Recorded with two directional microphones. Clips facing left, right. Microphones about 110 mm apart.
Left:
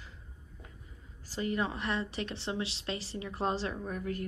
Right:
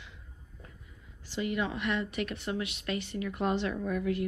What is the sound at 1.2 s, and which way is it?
Speech, 40° left (ahead or behind).